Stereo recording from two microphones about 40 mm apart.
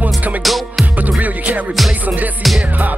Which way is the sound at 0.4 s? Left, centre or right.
Centre.